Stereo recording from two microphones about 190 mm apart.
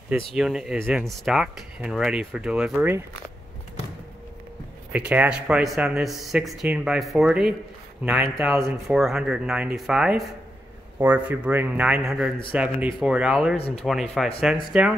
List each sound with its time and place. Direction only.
0.3 s speech: 5° right (ahead or behind)
4.9 s speech: 10° right (ahead or behind)
8.6 s speech: centre (ahead or behind)
13.6 s speech: 30° left (ahead or behind)
14.1 s speech: centre (ahead or behind)